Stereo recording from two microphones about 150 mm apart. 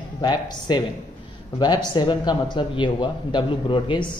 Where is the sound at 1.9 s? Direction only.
30° left (ahead or behind).